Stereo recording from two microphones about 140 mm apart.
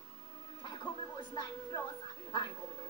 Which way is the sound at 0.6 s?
35° left (ahead or behind).